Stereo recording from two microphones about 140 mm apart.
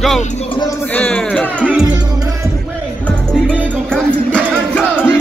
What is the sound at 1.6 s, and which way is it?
Music, 10° right (ahead or behind).